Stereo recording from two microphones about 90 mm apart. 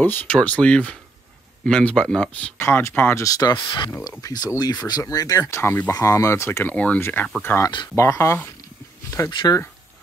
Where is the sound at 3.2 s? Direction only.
45° left (ahead or behind); by 3.9 s 60° left (ahead or behind).